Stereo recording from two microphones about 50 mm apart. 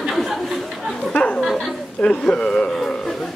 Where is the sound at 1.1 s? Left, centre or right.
Left.